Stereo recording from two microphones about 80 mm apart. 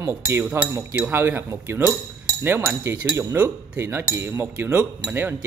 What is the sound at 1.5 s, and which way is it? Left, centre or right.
Cutlery, right.